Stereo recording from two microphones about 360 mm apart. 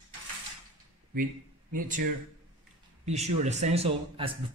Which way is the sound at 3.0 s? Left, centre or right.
Centre.